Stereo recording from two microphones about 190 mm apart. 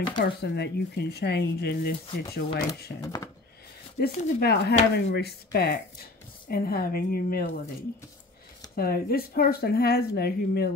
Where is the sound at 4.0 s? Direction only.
55° left (ahead or behind).